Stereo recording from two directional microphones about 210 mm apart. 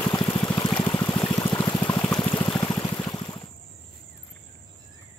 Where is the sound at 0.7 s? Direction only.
10° left (ahead or behind).